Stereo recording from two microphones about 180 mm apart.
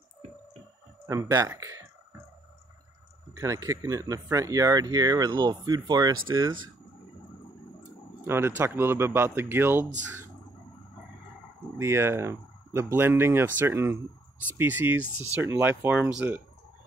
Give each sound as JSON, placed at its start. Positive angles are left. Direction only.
{"t": 1.0, "sound": "speech", "side_deg": -20}
{"t": 3.3, "sound": "speech", "side_deg": -15}
{"t": 8.2, "sound": "speech", "side_deg": -15}
{"t": 11.8, "sound": "speech", "side_deg": -15}